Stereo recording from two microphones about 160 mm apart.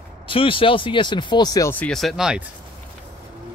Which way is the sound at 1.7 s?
5° left (ahead or behind).